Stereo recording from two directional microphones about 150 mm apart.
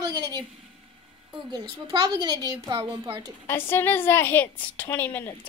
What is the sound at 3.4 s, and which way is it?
A woman's voice, 15° left (ahead or behind).